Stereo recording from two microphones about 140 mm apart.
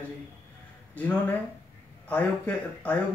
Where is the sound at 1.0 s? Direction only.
10° left (ahead or behind).